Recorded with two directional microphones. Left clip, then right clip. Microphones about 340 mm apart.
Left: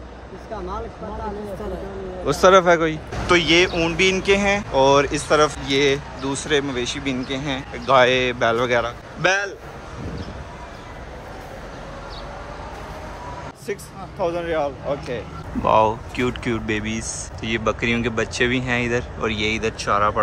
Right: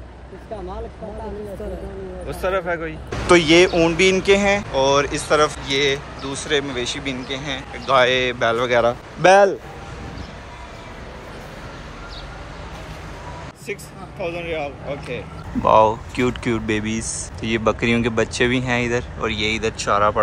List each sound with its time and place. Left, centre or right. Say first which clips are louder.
2.2 s speech: left 9 dB; centre
3.3 s speech: right 3 dB; centre
14.2 s speech: left 3 dB; centre
15.6 s speech: right 3 dB; centre